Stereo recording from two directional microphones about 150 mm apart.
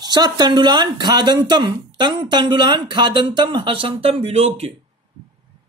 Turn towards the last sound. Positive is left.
turn(degrees=-45)  # may be behind; listen again after turning